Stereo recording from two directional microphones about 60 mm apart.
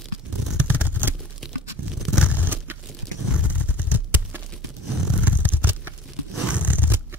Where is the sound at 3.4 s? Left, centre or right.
Right.